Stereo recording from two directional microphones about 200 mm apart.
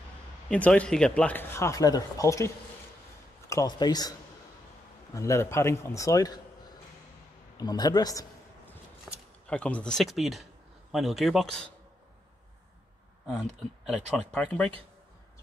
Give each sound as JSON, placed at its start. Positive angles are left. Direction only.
{"t": 0.5, "sound": "speech", "side_deg": 5}
{"t": 5.1, "sound": "speech", "side_deg": 15}
{"t": 7.5, "sound": "speech", "side_deg": 20}
{"t": 9.1, "sound": "a sound", "side_deg": 0}
{"t": 9.5, "sound": "speech", "side_deg": 5}
{"t": 13.8, "sound": "speech", "side_deg": 5}